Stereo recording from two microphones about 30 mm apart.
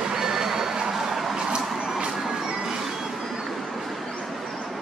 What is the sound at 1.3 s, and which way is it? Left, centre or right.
Vehicle, right.